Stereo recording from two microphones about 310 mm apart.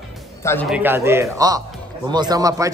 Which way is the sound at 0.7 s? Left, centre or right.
Centre.